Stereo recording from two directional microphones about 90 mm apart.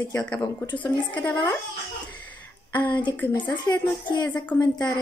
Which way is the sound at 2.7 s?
15° left (ahead or behind).